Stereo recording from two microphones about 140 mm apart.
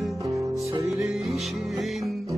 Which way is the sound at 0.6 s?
20° right (ahead or behind).